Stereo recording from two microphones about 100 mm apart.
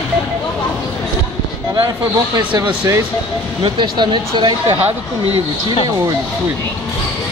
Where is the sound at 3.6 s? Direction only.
55° right (ahead or behind).